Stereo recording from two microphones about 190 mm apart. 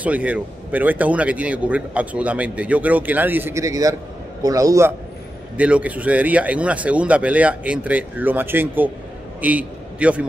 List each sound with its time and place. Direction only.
0.0 s a man's voice: 5° right (ahead or behind)